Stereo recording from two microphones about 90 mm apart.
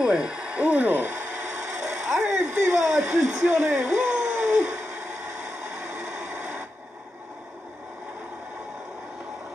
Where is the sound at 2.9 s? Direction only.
5° right (ahead or behind).